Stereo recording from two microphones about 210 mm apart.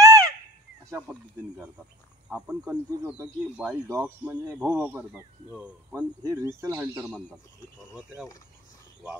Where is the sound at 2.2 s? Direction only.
5° right (ahead or behind).